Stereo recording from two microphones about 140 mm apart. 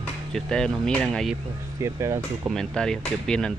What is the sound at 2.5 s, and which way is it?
Speech, 5° left (ahead or behind).